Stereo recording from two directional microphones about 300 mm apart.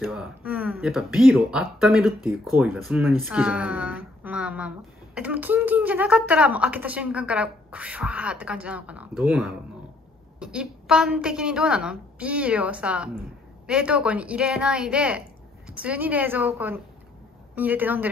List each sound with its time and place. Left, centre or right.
0.0 s speech: centre